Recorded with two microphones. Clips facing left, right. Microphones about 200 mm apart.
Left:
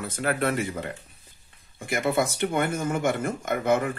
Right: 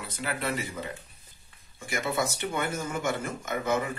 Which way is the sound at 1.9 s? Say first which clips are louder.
Left 5 dB; 55° left (ahead or behind).